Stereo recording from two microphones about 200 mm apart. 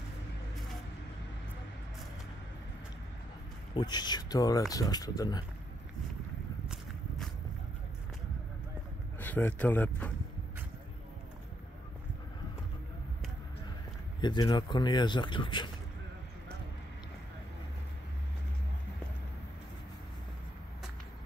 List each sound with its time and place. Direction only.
3.7 s speech: 20° left (ahead or behind)
9.2 s speech: 10° left (ahead or behind)
14.2 s speech: 20° left (ahead or behind)